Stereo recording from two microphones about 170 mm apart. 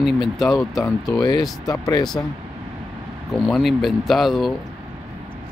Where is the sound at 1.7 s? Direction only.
20° left (ahead or behind).